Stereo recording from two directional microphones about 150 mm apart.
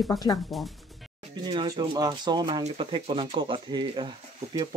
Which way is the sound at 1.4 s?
30° right (ahead or behind).